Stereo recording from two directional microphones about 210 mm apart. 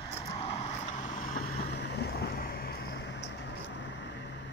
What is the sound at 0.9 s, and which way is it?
Vehicle, 40° left (ahead or behind).